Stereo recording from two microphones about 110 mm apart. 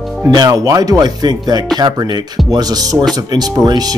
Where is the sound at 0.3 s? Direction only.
35° right (ahead or behind).